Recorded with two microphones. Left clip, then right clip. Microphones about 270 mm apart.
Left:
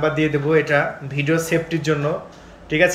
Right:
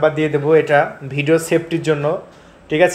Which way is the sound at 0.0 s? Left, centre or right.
Centre.